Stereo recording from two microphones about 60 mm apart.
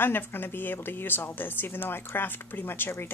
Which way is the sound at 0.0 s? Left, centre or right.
Left.